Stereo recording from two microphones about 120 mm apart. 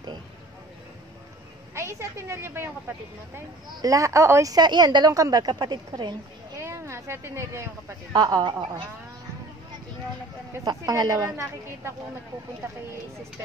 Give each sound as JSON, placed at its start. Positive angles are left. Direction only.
{"t": 1.8, "sound": "a woman's voice", "side_deg": -25}
{"t": 6.6, "sound": "a sound", "side_deg": -20}
{"t": 8.1, "sound": "a woman's voice", "side_deg": -35}
{"t": 10.6, "sound": "a woman's voice", "side_deg": -35}